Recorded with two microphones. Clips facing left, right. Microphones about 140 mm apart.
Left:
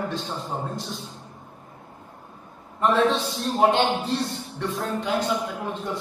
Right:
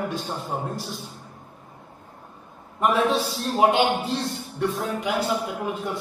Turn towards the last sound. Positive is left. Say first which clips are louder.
# right 1 dB
turn(degrees=-5)  # may be behind; listen again after turning